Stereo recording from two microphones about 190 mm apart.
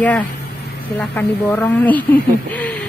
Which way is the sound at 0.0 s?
10° left (ahead or behind).